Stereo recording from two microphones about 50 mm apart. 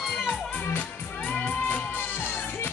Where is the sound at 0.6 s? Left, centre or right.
Left.